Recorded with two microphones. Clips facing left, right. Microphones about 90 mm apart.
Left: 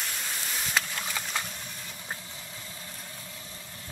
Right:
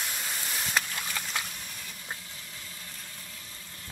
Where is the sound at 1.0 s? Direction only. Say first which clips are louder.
Left 1 dB; 10° left (ahead or behind).